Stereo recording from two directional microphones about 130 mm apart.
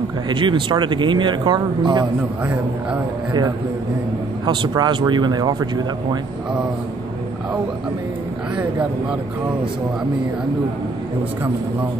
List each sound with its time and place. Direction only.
0.3 s speech: 40° right (ahead or behind)
4.5 s speech: 35° right (ahead or behind)